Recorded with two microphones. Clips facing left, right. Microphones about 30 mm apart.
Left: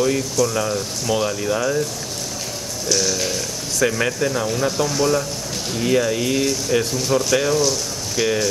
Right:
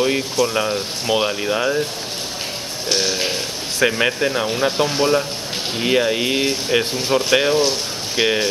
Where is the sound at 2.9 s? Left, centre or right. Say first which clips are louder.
Right 1 dB; right.